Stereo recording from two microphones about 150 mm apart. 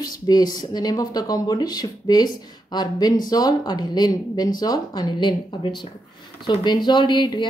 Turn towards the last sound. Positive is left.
turn(degrees=30)  # may be behind; listen again after turning